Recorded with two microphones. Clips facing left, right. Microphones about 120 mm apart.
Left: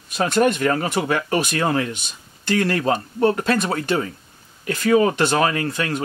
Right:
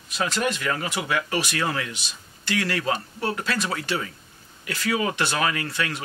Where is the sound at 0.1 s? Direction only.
50° left (ahead or behind).